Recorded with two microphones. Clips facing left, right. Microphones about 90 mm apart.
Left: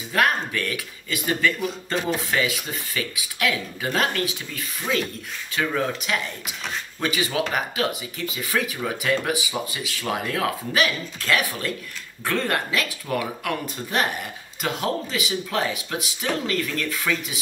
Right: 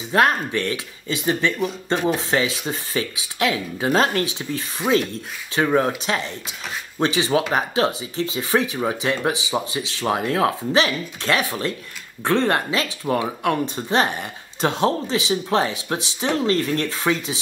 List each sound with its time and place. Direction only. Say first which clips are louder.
0.1 s speech: right 4 dB; 25° right (ahead or behind)